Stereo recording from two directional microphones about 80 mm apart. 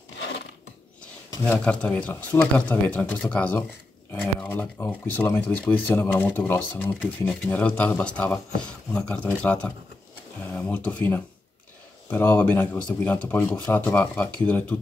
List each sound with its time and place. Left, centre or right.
1.6 s speech: centre